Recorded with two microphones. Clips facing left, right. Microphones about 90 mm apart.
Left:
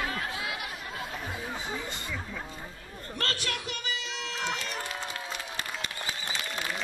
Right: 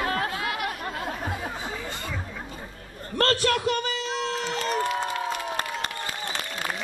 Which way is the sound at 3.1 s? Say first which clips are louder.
Right 11 dB; 45° right (ahead or behind).